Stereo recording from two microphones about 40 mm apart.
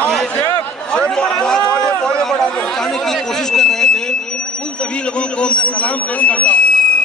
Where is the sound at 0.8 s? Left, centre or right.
Left.